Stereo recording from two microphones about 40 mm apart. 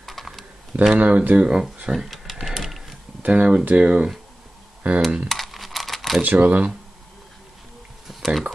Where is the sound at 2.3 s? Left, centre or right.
Centre.